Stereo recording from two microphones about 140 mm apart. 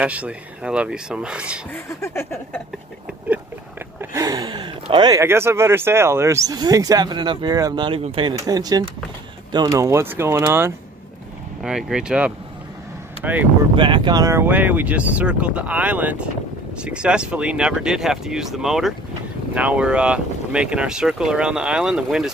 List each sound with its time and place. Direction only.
0.0 s speech: 10° right (ahead or behind)
1.7 s a sound: 20° left (ahead or behind)
4.0 s speech: 25° right (ahead or behind)
5.2 s speech: 20° right (ahead or behind); by 8.0 s 35° right (ahead or behind)
8.0 s speech: 45° right (ahead or behind)
8.3 s speech: 25° right (ahead or behind)
11.6 s speech: 5° right (ahead or behind)
13.7 s speech: 35° right (ahead or behind); by 22.3 s 5° right (ahead or behind)